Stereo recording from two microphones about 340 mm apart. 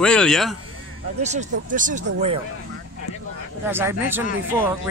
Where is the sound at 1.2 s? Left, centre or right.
Right.